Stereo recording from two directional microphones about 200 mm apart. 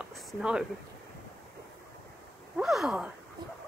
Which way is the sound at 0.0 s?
5° right (ahead or behind).